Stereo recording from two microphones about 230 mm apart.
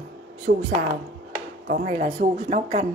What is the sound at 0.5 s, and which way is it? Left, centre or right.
A woman's voice, right.